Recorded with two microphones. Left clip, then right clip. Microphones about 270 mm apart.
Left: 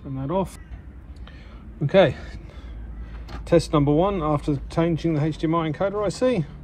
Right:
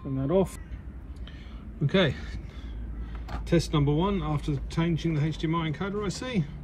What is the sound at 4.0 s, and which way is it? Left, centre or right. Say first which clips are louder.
Speech: left 8 dB; centre.